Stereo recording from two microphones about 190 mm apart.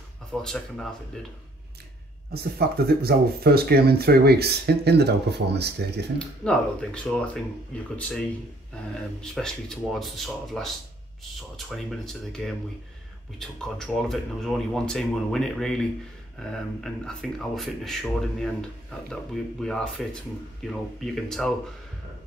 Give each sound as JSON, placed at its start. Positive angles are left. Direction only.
{"t": 0.3, "sound": "speech", "side_deg": 5}
{"t": 2.3, "sound": "speech", "side_deg": -55}
{"t": 6.4, "sound": "speech", "side_deg": 5}
{"t": 9.2, "sound": "speech", "side_deg": 5}
{"t": 19.6, "sound": "speech", "side_deg": 5}